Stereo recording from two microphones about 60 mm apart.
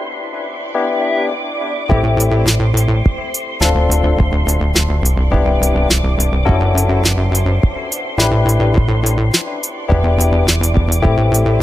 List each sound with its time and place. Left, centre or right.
1.9 s music: centre